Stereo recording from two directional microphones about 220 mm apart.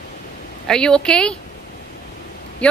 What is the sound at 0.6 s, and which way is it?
Speech, 5° left (ahead or behind).